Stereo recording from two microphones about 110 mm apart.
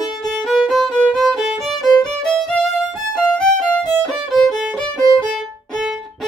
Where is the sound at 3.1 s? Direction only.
5° left (ahead or behind).